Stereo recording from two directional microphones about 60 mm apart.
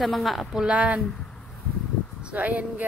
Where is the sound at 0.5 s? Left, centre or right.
Centre.